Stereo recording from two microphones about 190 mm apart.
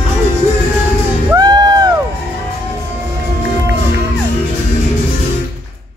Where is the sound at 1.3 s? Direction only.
20° right (ahead or behind).